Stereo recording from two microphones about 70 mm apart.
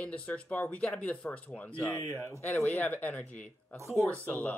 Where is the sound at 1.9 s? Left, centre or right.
Left.